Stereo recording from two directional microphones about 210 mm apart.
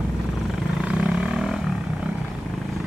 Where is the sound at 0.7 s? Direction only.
5° right (ahead or behind).